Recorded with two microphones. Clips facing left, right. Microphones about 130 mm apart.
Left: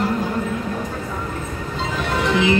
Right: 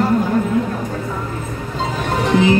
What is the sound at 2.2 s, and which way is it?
Music, 40° right (ahead or behind).